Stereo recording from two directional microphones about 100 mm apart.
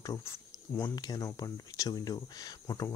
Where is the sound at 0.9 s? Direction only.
40° left (ahead or behind).